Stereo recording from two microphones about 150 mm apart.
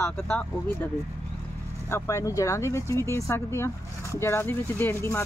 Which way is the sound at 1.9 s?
20° left (ahead or behind).